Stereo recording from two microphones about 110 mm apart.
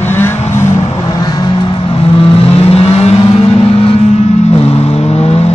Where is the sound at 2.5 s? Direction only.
65° left (ahead or behind).